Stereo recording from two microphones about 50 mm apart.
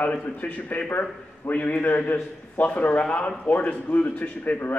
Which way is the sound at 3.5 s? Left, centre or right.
Left.